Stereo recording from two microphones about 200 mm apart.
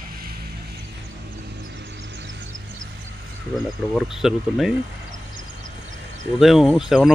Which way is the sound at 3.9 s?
Centre (ahead or behind).